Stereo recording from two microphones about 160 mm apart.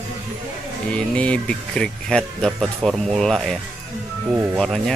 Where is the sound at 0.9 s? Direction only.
5° left (ahead or behind).